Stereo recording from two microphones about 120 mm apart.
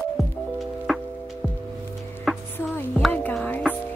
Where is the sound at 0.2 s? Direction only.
Centre (ahead or behind).